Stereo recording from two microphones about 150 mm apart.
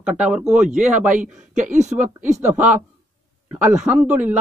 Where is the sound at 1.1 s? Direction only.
55° right (ahead or behind).